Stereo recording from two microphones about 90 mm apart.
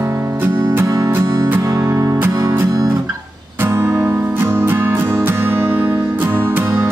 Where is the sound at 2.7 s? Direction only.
40° right (ahead or behind).